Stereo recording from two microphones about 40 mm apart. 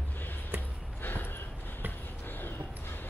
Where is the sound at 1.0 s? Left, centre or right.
Left.